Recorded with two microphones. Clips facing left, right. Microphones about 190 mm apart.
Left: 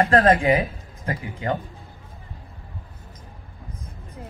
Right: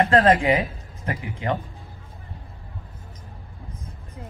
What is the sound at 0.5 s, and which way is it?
Speech, 35° left (ahead or behind).